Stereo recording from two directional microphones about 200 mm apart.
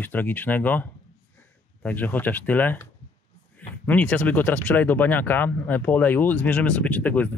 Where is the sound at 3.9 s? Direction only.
5° left (ahead or behind).